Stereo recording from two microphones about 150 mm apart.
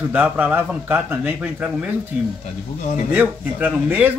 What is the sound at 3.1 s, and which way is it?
A man's voice, 10° right (ahead or behind).